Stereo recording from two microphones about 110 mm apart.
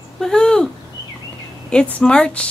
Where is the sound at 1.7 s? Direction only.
10° left (ahead or behind).